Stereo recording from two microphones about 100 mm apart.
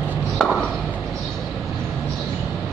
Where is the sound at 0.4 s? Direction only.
Centre (ahead or behind).